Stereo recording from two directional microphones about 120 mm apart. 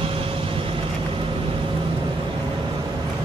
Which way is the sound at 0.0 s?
50° right (ahead or behind).